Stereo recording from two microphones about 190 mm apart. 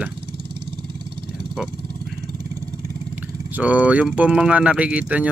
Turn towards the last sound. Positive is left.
turn(degrees=-5)  # may be behind; listen again after turning